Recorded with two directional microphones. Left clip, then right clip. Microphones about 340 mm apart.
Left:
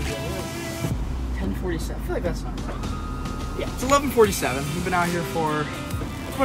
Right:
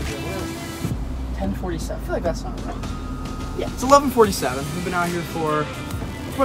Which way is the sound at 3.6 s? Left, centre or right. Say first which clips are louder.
Right 6 dB; centre.